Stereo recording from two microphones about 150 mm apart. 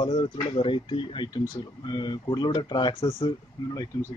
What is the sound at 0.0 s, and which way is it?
Speech, 35° left (ahead or behind).